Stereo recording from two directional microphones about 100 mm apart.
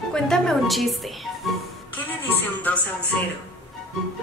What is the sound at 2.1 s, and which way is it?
Music, 15° left (ahead or behind).